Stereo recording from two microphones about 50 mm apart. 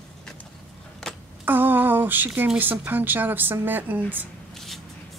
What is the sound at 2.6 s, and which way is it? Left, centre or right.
A woman's voice, right.